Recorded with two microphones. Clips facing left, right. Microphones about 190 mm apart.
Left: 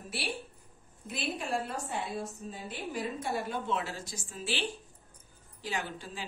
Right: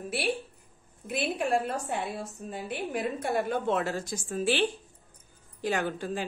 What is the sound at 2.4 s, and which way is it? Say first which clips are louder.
A woman's voice: right 5 dB; 60° right (ahead or behind).